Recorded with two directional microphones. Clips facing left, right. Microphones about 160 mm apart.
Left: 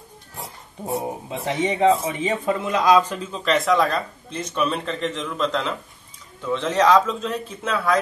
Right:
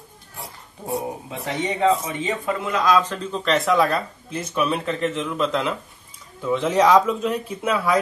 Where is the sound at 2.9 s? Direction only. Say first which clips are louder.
Left 3 dB; 10° left (ahead or behind).